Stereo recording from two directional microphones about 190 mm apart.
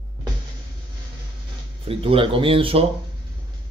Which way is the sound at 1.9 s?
30° right (ahead or behind).